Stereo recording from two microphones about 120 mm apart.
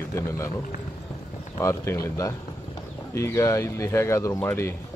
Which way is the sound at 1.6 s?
25° left (ahead or behind).